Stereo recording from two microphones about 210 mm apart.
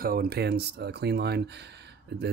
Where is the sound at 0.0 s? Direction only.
45° right (ahead or behind).